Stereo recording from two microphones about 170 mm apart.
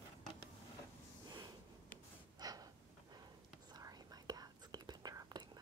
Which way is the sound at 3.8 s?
20° right (ahead or behind).